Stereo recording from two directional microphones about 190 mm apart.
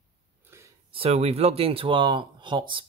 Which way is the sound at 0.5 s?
15° right (ahead or behind).